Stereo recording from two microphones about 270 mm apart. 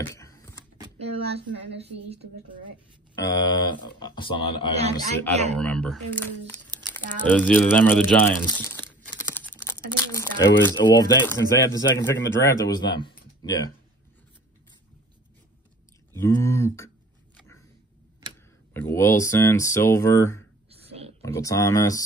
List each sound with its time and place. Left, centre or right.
0.0 s a sound: centre
0.7 s speech: centre
3.2 s speech: centre
5.3 s speech: right
5.6 s speech: centre
16.2 s speech: centre
18.7 s speech: centre